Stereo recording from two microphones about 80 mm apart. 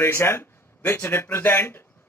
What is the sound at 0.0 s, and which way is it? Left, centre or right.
A man's voice, left.